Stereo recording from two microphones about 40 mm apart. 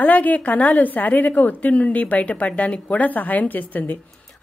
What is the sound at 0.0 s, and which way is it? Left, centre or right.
A woman's voice, left.